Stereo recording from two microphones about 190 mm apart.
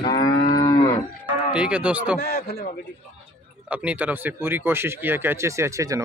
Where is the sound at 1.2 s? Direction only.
5° right (ahead or behind).